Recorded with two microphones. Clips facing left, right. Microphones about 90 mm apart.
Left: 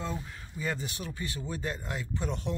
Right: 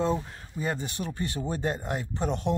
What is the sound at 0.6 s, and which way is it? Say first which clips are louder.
Speech: right 4 dB; 55° right (ahead or behind).